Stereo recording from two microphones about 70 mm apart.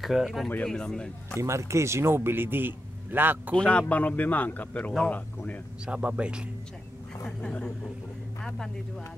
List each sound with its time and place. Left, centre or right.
0.0 s speech: centre
0.7 s a woman's voice: centre
1.4 s a man's voice: right
3.5 s speech: centre
5.9 s speech: centre
7.2 s a woman's voice: centre